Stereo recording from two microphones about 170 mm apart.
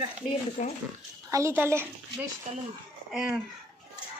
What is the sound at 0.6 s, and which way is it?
Speech, 45° left (ahead or behind).